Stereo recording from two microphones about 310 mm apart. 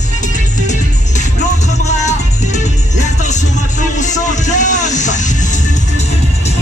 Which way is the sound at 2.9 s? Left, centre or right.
Left.